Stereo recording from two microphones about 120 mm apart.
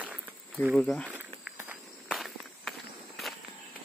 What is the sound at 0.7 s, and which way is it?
Speech, 5° left (ahead or behind).